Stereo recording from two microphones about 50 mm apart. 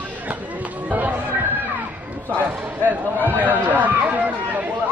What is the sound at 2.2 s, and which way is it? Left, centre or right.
Speech, right.